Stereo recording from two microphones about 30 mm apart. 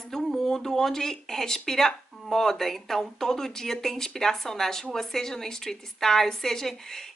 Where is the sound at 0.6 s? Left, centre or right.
Centre.